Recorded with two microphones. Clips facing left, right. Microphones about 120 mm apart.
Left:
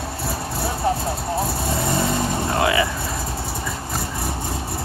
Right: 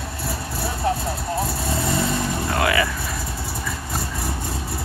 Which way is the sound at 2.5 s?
25° left (ahead or behind).